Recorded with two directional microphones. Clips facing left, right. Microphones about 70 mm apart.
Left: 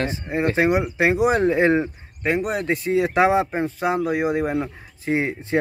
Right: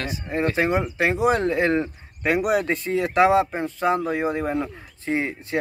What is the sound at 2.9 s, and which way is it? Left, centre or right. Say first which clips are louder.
Speech: even; left.